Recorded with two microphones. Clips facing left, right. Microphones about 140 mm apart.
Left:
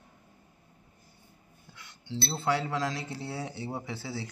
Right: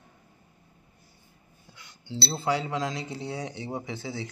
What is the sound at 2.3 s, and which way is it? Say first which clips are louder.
Speech: right 1 dB; centre (ahead or behind).